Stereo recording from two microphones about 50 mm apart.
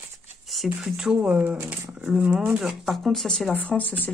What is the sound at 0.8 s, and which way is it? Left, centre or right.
Speech, centre.